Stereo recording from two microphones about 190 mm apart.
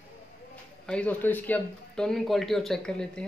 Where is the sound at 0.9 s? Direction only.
5° left (ahead or behind).